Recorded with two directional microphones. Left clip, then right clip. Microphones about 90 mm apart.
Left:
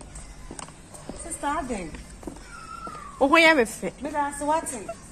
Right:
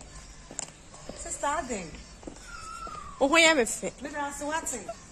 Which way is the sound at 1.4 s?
40° right (ahead or behind).